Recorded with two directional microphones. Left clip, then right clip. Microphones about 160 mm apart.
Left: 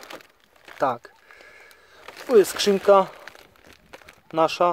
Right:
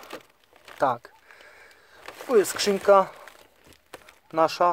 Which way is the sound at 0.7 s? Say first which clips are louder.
Even; 10° left (ahead or behind).